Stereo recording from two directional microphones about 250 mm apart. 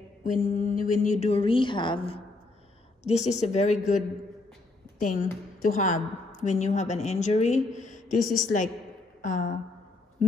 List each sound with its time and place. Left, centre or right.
0.2 s a woman's voice: left